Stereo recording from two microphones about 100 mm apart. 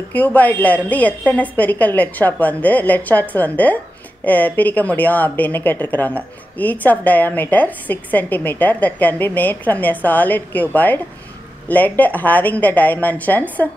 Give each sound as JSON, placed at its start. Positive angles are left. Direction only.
{"t": 0.1, "sound": "speech", "side_deg": 15}